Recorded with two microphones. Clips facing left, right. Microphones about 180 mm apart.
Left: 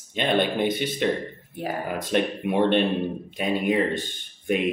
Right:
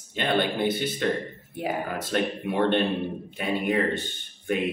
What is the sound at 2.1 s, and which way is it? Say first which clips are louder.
Speech: left 3 dB; 20° left (ahead or behind).